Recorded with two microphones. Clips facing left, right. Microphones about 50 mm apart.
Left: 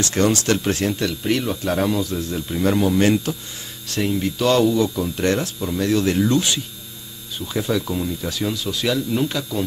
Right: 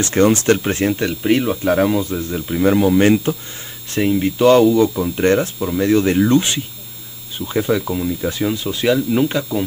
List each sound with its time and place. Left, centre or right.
0.0 s speech: right
3.0 s speech: right